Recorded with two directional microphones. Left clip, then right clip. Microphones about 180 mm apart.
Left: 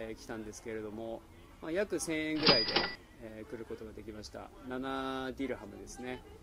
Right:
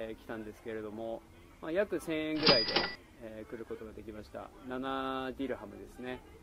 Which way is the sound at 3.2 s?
15° left (ahead or behind).